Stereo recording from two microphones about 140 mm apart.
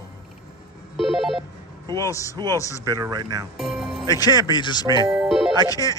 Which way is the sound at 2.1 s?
20° left (ahead or behind).